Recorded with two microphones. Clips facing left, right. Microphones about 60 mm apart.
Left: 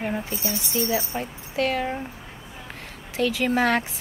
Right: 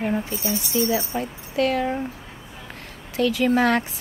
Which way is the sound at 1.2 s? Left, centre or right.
Left.